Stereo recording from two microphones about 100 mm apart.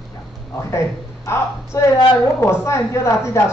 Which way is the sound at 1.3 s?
30° left (ahead or behind).